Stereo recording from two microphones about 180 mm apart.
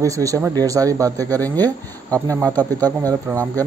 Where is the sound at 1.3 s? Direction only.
10° left (ahead or behind).